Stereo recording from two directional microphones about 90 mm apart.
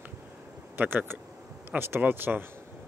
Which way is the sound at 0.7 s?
20° right (ahead or behind).